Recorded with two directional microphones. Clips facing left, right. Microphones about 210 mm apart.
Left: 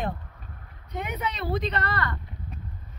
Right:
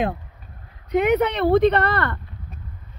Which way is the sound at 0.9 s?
75° right (ahead or behind).